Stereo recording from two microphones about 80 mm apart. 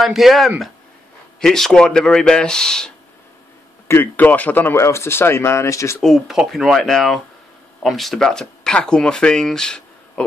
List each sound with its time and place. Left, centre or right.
0.0 s speech: centre
3.8 s speech: left
4.7 s speech: left
5.9 s speech: centre